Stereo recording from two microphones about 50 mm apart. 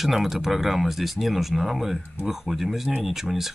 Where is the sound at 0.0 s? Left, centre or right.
Centre.